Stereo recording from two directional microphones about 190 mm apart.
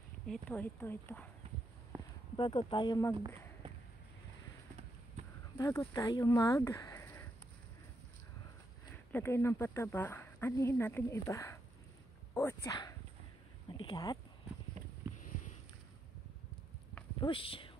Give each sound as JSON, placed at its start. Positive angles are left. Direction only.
{"t": 0.3, "sound": "speech", "side_deg": 10}
{"t": 2.3, "sound": "speech", "side_deg": 25}
{"t": 5.6, "sound": "speech", "side_deg": 15}
{"t": 8.9, "sound": "speech", "side_deg": 10}
{"t": 12.6, "sound": "speech", "side_deg": 20}
{"t": 15.1, "sound": "a sound", "side_deg": 40}
{"t": 17.2, "sound": "speech", "side_deg": 30}